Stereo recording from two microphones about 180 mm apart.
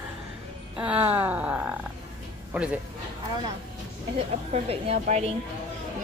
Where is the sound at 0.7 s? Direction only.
5° right (ahead or behind).